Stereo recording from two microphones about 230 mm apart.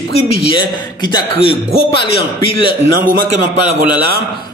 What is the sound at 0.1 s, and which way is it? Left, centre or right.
A man's voice, centre.